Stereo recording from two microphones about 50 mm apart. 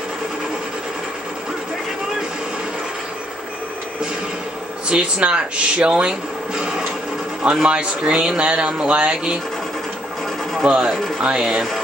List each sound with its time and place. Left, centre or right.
4.8 s speech: right
10.6 s speech: centre
10.9 s speech: centre
11.2 s speech: centre